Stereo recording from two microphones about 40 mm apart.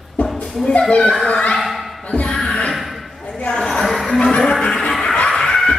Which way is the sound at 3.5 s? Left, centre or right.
Centre.